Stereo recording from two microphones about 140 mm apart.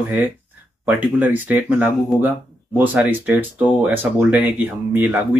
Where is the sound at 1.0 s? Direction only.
10° right (ahead or behind).